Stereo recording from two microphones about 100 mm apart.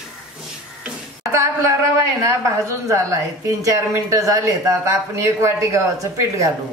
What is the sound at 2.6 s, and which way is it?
Speech, 30° right (ahead or behind).